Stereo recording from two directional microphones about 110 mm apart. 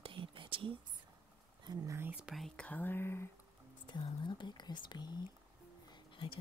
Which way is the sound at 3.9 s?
45° left (ahead or behind).